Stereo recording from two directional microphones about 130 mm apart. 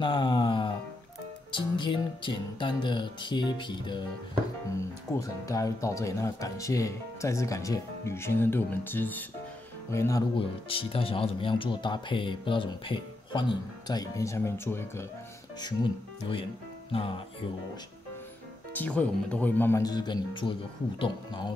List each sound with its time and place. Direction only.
0.0 s music: 40° left (ahead or behind)
1.5 s speech: 40° left (ahead or behind)
5.1 s speech: 25° left (ahead or behind)
10.3 s speech: 45° left (ahead or behind); by 15.0 s 20° left (ahead or behind)
15.6 s speech: 40° left (ahead or behind)
18.7 s speech: 10° left (ahead or behind)
19.8 s speech: 35° left (ahead or behind)